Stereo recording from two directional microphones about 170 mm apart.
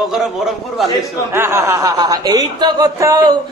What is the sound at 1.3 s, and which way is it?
A man's voice, 15° right (ahead or behind).